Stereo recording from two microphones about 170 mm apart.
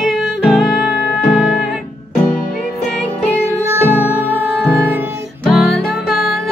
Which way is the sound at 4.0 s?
10° left (ahead or behind).